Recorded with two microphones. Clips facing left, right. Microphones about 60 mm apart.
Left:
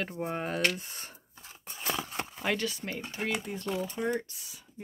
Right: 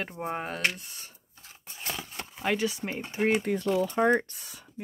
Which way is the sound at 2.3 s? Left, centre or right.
Centre.